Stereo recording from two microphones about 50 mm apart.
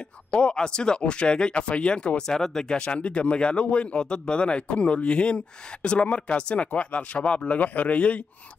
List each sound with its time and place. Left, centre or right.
0.3 s speech: centre
2.8 s speech: left